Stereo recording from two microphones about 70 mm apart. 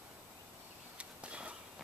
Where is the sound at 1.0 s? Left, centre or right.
Centre.